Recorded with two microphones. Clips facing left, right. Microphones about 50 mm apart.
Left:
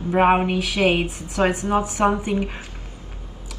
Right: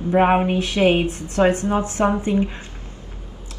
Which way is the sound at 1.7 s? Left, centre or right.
Left.